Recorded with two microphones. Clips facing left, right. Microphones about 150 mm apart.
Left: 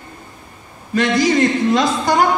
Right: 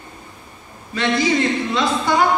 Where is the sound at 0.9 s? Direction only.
45° left (ahead or behind).